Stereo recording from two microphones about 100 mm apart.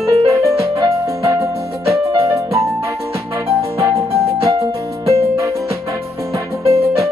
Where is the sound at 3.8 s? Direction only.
30° right (ahead or behind).